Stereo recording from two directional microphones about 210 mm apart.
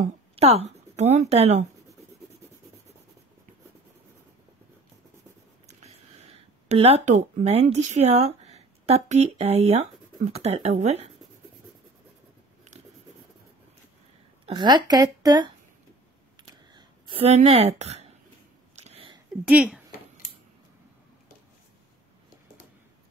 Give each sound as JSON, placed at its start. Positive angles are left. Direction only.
{"t": 0.0, "sound": "speech", "side_deg": -30}
{"t": 6.7, "sound": "speech", "side_deg": -30}
{"t": 14.4, "sound": "speech", "side_deg": -20}
{"t": 16.3, "sound": "a sound", "side_deg": -25}
{"t": 19.4, "sound": "speech", "side_deg": -5}
{"t": 20.2, "sound": "a sound", "side_deg": 35}